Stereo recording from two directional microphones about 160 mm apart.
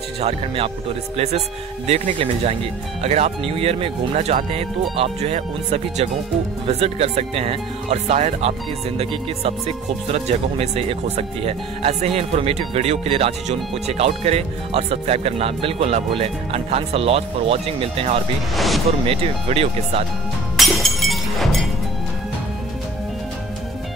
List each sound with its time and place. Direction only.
0.2 s speech: 40° right (ahead or behind)
20.5 s music: centre (ahead or behind)